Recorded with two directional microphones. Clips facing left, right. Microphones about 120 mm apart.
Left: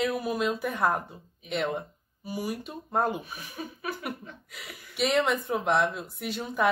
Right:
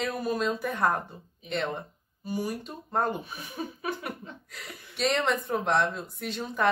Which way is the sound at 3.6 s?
35° right (ahead or behind).